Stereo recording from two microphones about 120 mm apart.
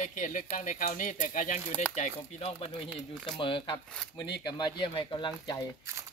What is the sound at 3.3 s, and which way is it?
Speech, 45° left (ahead or behind).